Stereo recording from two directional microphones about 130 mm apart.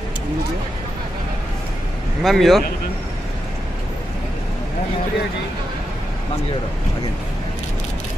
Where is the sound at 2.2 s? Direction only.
Centre (ahead or behind).